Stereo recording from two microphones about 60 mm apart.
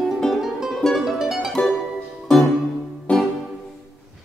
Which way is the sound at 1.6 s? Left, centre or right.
Left.